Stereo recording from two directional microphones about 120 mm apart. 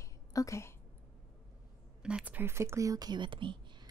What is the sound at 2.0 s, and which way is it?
Speech, 10° right (ahead or behind).